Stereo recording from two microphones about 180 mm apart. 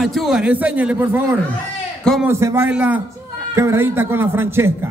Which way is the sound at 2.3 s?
15° right (ahead or behind).